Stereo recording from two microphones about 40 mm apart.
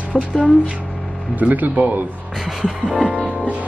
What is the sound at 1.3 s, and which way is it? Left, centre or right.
Speech, right.